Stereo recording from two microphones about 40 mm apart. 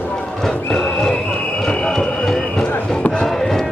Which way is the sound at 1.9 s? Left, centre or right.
Centre.